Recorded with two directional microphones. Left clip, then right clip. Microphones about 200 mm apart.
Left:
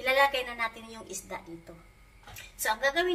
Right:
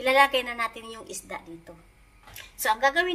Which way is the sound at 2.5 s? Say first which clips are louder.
Right 5 dB; 50° right (ahead or behind).